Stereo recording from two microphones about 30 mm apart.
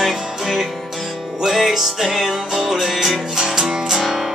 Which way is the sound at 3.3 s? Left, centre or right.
Centre.